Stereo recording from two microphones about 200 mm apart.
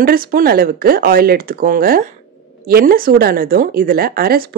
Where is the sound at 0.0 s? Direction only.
45° right (ahead or behind).